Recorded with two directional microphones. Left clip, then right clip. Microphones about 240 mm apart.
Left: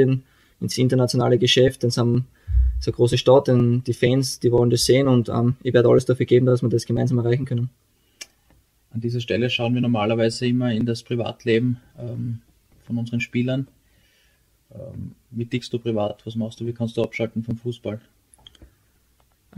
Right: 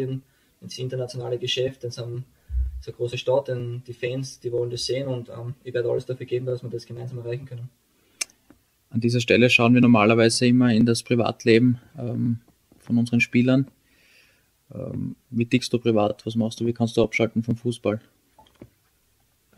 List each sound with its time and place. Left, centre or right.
0.7 s speech: left
8.2 s tick: right
9.0 s speech: right
15.3 s speech: right